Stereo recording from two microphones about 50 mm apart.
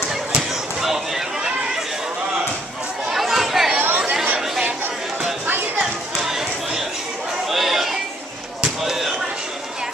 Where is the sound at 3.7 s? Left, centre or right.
Right.